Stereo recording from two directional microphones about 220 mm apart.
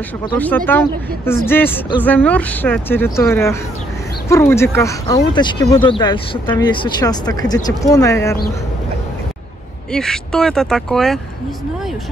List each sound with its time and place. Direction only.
0.7 s speech: 10° left (ahead or behind)
9.9 s speech: 5° left (ahead or behind)